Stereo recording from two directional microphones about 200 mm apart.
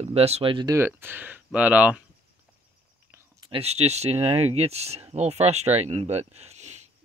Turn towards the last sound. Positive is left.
turn(degrees=-35)  # may be behind; listen again after turning